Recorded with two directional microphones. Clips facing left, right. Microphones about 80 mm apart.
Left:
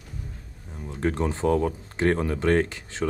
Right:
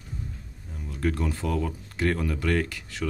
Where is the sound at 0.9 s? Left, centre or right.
Left.